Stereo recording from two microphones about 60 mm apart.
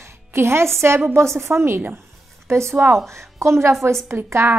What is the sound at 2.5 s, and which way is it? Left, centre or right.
A woman's voice, right.